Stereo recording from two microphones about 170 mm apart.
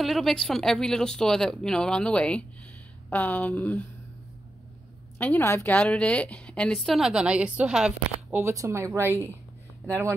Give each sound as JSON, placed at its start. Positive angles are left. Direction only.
{"t": 0.0, "sound": "a woman's voice", "side_deg": 0}
{"t": 5.2, "sound": "a woman's voice", "side_deg": 15}
{"t": 8.4, "sound": "speech", "side_deg": -15}